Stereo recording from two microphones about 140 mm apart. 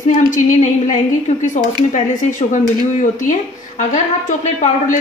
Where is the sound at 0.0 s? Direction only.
65° left (ahead or behind).